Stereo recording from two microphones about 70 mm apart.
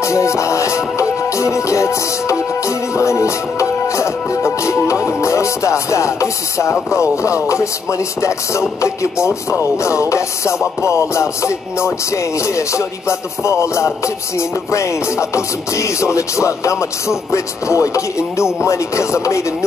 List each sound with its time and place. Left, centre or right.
0.0 s music: left
13.4 s music: left